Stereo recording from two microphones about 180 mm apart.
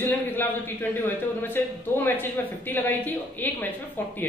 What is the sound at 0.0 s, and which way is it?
A man's voice, 10° left (ahead or behind).